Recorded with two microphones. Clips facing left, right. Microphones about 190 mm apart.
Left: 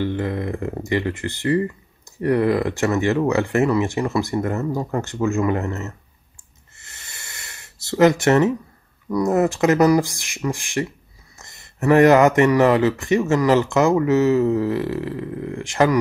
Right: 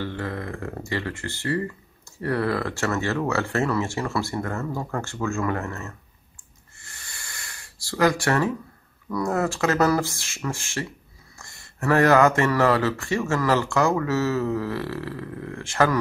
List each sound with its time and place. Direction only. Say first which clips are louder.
0.0 s speech: left 7 dB; 20° left (ahead or behind)
6.8 s a sound: left 1 dB; 20° left (ahead or behind)
9.1 s speech: left 6 dB; 20° left (ahead or behind)